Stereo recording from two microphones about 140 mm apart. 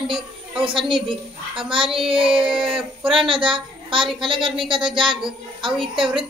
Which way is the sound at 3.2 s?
35° right (ahead or behind).